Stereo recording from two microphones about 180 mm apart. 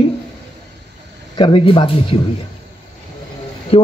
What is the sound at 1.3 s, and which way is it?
Speech, 30° left (ahead or behind).